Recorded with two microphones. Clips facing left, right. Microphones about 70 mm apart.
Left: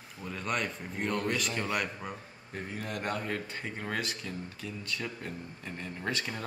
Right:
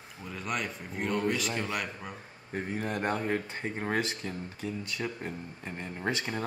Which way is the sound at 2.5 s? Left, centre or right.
Right.